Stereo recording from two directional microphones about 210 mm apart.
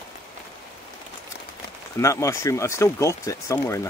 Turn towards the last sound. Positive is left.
turn(degrees=15)  # may be behind; listen again after turning